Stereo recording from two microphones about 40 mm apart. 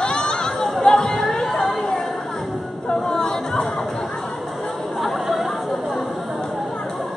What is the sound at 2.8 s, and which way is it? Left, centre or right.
Chatter, centre.